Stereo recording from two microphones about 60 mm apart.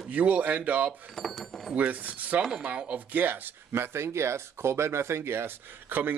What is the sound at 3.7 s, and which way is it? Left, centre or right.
Speech, right.